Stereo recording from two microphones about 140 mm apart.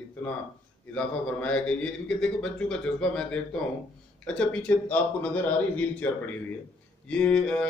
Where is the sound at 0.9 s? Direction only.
10° left (ahead or behind).